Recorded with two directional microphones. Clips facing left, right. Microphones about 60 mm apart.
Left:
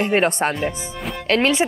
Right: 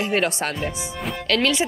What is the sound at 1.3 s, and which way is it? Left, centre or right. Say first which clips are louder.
Speech: left 3 dB; left.